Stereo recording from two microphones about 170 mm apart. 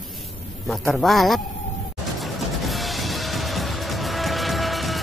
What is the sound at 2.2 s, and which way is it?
Music, centre (ahead or behind).